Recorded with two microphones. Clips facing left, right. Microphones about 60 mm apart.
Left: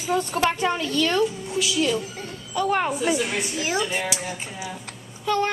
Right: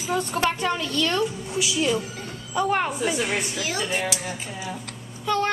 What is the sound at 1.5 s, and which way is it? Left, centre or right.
A woman's voice, centre.